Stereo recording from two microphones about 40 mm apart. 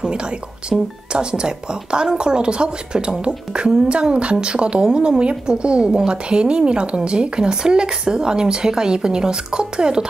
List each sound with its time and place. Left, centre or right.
0.7 s a woman's voice: right